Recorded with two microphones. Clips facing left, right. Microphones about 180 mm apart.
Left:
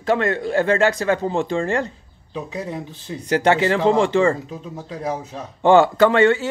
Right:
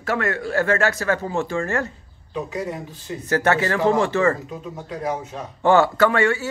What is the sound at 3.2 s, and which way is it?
Speech, 15° left (ahead or behind).